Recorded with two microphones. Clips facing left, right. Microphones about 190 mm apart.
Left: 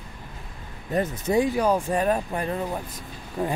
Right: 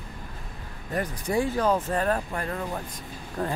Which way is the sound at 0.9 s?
20° left (ahead or behind).